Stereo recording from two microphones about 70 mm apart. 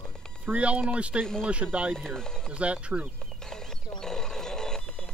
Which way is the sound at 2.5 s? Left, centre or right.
Centre.